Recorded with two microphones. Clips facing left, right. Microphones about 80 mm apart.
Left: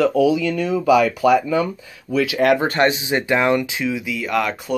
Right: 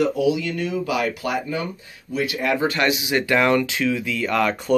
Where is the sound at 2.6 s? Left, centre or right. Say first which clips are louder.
Left 3 dB; left.